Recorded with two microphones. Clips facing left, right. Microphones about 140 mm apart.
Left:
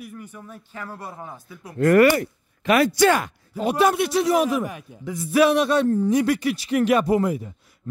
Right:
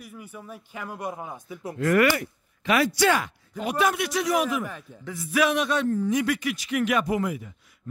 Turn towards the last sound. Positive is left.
turn(degrees=35)  # may be behind; listen again after turning